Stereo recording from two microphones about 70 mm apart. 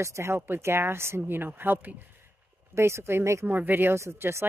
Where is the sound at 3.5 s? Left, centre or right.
Right.